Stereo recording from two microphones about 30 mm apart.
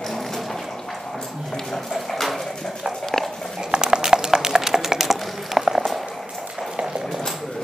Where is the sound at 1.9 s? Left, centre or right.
Centre.